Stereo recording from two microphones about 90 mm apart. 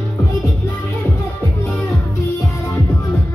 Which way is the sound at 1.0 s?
35° left (ahead or behind).